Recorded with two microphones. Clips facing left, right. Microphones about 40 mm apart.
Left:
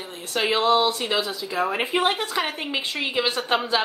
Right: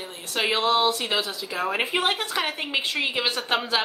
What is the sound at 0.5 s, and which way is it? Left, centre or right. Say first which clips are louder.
Speech: left 3 dB; right.